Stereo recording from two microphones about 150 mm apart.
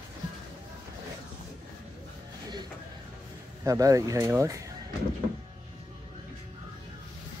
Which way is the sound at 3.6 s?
20° right (ahead or behind).